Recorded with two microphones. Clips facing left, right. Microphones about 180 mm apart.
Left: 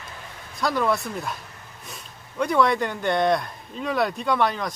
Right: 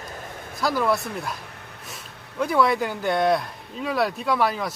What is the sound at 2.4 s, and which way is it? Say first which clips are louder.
Speech: even; 5° right (ahead or behind).